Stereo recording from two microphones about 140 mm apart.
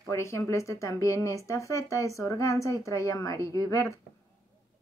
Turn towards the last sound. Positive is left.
turn(degrees=20)  # may be behind; listen again after turning